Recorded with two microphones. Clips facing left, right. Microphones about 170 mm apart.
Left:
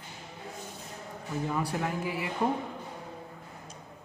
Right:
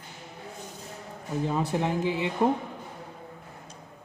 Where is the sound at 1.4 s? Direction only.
25° right (ahead or behind).